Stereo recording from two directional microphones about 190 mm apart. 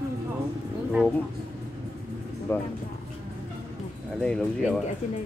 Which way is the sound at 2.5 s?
10° left (ahead or behind).